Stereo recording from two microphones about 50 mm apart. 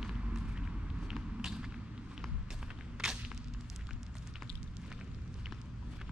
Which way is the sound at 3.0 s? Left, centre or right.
Centre.